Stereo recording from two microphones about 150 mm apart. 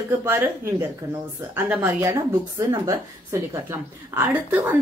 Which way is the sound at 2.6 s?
30° right (ahead or behind).